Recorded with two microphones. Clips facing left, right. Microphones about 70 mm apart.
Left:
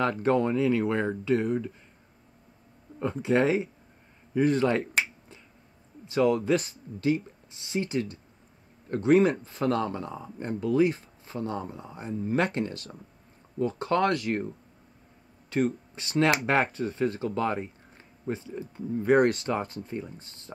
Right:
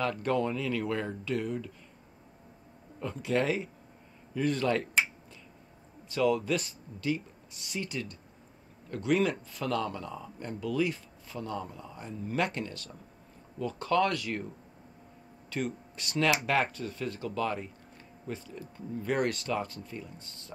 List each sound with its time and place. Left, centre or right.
0.2 s speech: left
3.0 s speech: left
6.0 s speech: left
14.1 s speech: left
15.5 s speech: left